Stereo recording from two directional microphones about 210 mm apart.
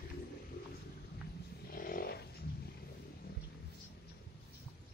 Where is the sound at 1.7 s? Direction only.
45° left (ahead or behind).